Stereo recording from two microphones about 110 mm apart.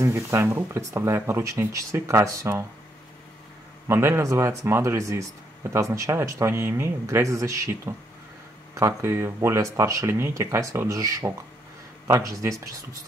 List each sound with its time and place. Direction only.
0.0 s speech: 25° right (ahead or behind)
3.8 s speech: 20° right (ahead or behind)